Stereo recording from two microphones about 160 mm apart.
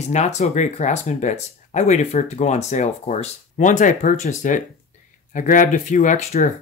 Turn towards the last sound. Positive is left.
turn(degrees=45)  # may be behind; listen again after turning